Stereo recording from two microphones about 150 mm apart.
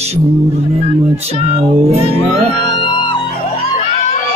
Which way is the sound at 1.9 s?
45° right (ahead or behind).